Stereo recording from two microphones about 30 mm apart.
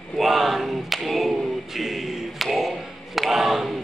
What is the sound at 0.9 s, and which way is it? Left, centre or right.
Choir, centre.